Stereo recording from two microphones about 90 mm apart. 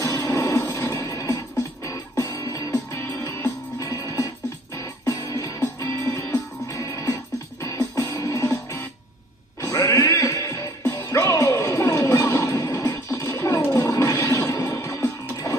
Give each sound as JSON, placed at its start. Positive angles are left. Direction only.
{"t": 0.0, "sound": "music", "side_deg": 40}
{"t": 2.7, "sound": "music", "side_deg": 30}
{"t": 9.9, "sound": "music", "side_deg": 30}
{"t": 10.8, "sound": "music", "side_deg": 20}
{"t": 11.1, "sound": "music", "side_deg": 30}